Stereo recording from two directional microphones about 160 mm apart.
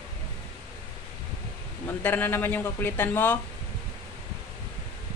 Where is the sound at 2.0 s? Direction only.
10° left (ahead or behind).